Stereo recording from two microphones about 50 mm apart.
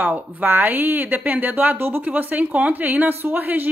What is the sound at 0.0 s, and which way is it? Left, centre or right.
A woman's voice, right.